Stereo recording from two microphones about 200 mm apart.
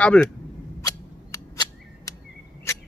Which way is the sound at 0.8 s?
15° left (ahead or behind).